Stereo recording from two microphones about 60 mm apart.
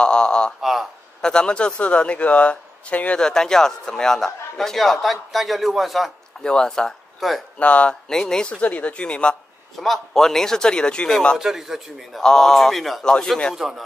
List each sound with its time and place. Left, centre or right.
0.0 s a sound: centre
0.6 s a sound: centre
1.2 s a man's voice: centre
3.2 s a man's voice: centre
6.4 s speech: centre
7.2 s speech: centre
7.5 s a man's voice: left
8.1 s speech: centre
9.8 s speech: centre
11.3 s a man's voice: centre
12.2 s speech: centre
13.0 s speech: centre
13.6 s a man's voice: centre